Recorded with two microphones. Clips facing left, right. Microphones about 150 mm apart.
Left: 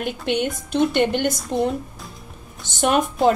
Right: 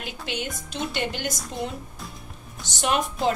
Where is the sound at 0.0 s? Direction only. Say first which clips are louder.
Left 10 dB; 55° left (ahead or behind).